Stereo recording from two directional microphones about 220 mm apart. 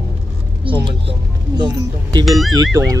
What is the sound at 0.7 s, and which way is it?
Speech, 25° right (ahead or behind).